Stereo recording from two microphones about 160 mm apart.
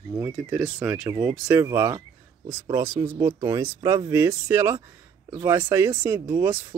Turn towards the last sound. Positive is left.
turn(degrees=-15)  # may be behind; listen again after turning